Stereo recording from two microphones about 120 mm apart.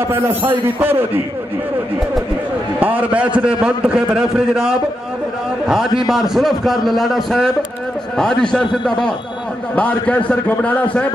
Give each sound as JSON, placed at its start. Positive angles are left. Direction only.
{"t": 0.1, "sound": "a man's voice", "side_deg": -15}
{"t": 2.8, "sound": "a man's voice", "side_deg": -15}